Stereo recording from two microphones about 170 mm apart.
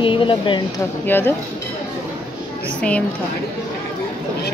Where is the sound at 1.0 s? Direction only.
10° left (ahead or behind).